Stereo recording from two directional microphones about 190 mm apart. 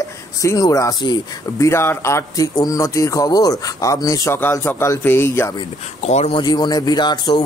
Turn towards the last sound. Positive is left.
turn(degrees=20)  # may be behind; listen again after turning